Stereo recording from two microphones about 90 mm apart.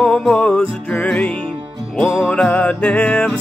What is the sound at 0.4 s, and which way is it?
Music, 15° left (ahead or behind).